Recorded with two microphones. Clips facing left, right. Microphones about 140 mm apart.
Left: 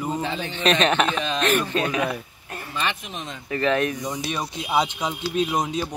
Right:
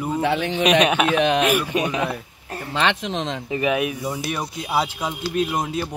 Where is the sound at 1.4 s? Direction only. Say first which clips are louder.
Right 2 dB; 10° right (ahead or behind).